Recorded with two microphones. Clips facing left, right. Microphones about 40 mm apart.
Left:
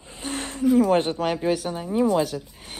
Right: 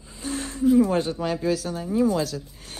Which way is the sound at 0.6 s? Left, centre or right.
Left.